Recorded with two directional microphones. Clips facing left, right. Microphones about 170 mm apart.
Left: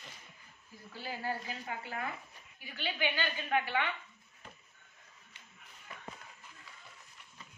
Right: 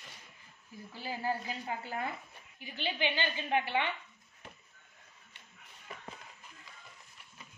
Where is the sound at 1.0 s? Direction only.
25° right (ahead or behind).